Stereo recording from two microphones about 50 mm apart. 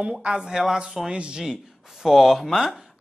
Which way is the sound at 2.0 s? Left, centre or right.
Centre.